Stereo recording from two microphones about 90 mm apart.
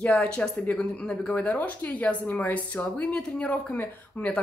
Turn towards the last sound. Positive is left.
turn(degrees=15)  # may be behind; listen again after turning